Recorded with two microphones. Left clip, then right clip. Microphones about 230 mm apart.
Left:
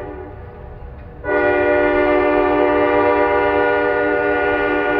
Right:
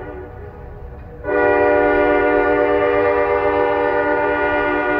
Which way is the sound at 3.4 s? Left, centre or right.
Left.